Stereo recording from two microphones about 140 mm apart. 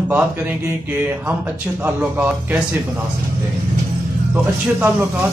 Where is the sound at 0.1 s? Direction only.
10° right (ahead or behind).